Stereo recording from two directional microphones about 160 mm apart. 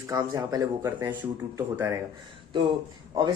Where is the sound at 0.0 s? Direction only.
20° right (ahead or behind).